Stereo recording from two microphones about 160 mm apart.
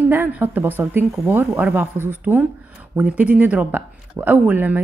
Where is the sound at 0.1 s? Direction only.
15° right (ahead or behind).